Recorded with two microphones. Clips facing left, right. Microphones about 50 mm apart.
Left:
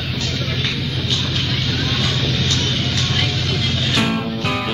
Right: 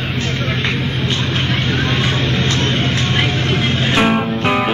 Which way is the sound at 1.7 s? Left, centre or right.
Right.